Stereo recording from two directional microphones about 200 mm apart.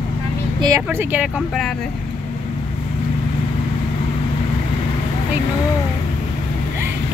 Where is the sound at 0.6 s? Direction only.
20° right (ahead or behind).